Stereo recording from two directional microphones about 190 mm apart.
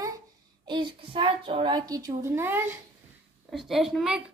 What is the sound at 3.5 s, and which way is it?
Speech, centre (ahead or behind).